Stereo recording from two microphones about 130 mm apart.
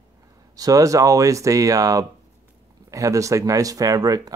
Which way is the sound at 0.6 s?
25° right (ahead or behind).